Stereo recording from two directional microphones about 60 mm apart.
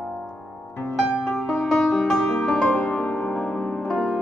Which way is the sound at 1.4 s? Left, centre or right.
Centre.